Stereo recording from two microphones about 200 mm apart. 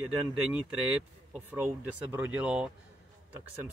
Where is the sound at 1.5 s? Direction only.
10° right (ahead or behind).